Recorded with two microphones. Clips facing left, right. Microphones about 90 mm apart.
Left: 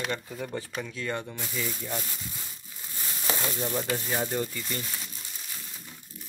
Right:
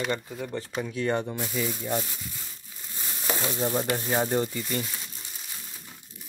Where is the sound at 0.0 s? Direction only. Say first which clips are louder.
Right 3 dB; 10° right (ahead or behind).